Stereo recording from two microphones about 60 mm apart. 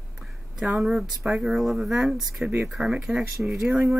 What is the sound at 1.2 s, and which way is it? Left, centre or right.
Speech, centre.